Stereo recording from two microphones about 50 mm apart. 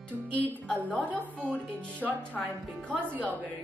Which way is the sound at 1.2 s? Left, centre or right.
Right.